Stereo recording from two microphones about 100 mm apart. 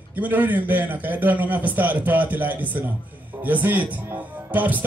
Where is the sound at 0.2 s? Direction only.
15° right (ahead or behind).